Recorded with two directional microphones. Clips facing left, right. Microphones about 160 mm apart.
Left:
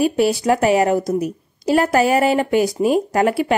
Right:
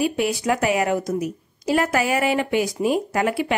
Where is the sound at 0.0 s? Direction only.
35° left (ahead or behind).